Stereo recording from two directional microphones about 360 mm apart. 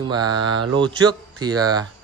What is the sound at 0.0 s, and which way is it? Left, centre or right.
Speech, centre.